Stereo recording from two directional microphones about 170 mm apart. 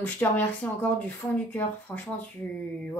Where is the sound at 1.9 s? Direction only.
10° left (ahead or behind).